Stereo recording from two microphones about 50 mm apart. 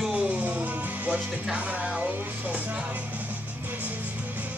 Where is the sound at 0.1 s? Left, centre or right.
Right.